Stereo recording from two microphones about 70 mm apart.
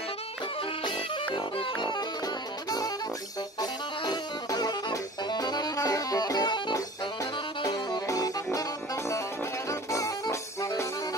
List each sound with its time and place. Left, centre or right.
4.0 s music: left
7.6 s music: left
9.7 s music: left